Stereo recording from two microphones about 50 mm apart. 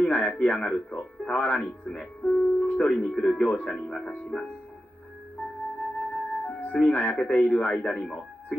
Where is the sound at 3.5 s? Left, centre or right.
Left.